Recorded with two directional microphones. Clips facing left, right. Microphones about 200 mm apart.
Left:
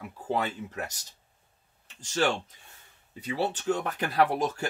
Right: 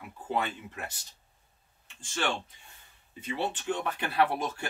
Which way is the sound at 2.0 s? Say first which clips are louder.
Left 5 dB; 40° left (ahead or behind).